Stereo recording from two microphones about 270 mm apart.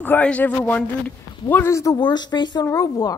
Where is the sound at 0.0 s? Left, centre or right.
Centre.